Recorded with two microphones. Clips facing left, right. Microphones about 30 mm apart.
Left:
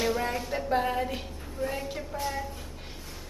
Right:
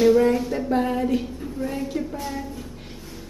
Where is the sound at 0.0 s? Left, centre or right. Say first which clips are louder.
Right 11 dB; centre.